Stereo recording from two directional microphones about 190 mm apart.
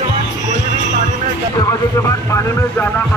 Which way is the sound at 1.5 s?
15° left (ahead or behind).